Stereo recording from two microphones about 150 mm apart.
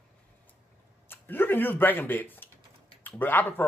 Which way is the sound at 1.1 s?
15° left (ahead or behind).